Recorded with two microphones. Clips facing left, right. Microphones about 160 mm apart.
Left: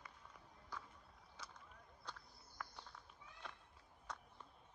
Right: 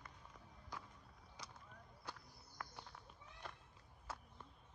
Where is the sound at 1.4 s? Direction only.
15° right (ahead or behind).